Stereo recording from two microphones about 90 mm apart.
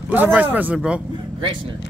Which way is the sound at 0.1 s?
20° right (ahead or behind).